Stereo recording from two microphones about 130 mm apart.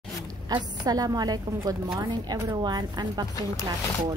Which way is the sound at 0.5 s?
30° right (ahead or behind).